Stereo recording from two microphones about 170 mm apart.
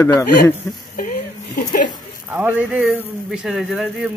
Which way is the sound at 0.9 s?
55° left (ahead or behind).